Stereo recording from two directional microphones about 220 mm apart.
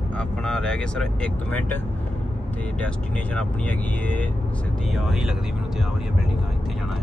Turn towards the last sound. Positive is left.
turn(degrees=0)  # may be behind; listen again after turning